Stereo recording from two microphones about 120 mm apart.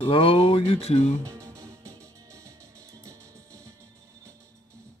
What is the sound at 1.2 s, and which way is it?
Music, 25° right (ahead or behind).